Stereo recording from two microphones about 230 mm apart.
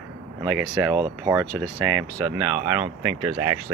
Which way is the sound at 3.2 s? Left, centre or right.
Right.